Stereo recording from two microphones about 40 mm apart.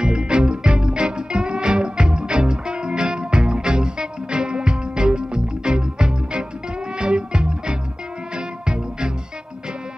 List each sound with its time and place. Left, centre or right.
0.0 s music: right